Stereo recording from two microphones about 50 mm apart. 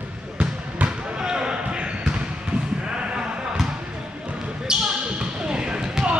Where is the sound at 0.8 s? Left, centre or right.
Right.